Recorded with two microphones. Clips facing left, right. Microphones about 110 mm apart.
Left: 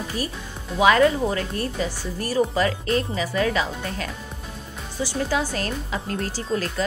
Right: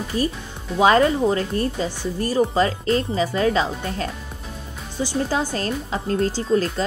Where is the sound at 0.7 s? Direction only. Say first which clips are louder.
Right 1 dB; 30° right (ahead or behind).